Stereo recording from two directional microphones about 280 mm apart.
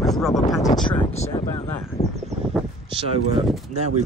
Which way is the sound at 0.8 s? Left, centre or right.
Left.